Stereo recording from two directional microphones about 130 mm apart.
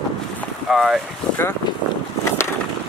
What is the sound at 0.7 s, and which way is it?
Speech, 5° right (ahead or behind).